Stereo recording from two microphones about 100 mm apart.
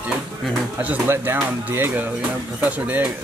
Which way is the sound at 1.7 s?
20° right (ahead or behind).